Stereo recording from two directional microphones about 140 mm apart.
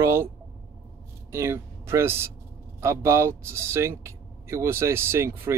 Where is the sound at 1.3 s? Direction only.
20° right (ahead or behind).